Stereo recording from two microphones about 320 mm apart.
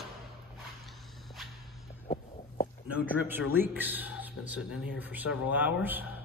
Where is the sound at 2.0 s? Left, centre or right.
Left.